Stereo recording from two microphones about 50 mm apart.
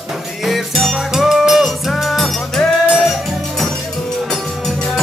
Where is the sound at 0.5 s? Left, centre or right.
Centre.